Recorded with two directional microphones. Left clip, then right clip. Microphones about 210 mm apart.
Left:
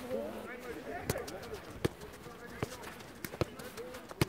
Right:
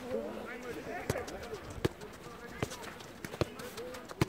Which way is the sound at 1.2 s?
10° left (ahead or behind).